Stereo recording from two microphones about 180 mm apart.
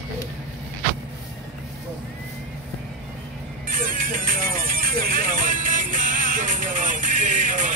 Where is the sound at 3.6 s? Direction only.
50° right (ahead or behind).